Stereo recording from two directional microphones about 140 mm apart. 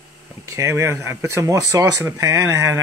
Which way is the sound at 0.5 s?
20° right (ahead or behind).